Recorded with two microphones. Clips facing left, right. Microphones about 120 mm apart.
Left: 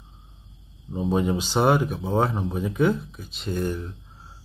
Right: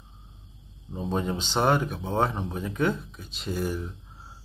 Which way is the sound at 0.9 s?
10° left (ahead or behind).